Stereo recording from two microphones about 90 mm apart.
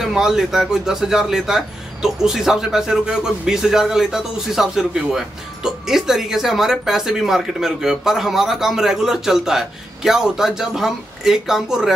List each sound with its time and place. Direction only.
0.0 s speech: 5° right (ahead or behind)